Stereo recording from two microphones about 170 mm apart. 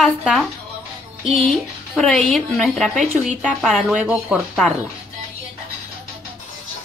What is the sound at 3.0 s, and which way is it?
Speech, 45° right (ahead or behind).